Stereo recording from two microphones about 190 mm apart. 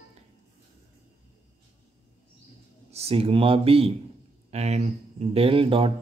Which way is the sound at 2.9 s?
30° right (ahead or behind).